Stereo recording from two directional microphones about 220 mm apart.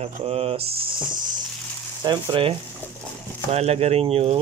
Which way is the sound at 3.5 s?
30° right (ahead or behind).